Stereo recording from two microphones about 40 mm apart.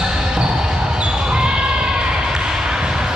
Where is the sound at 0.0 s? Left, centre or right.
Centre.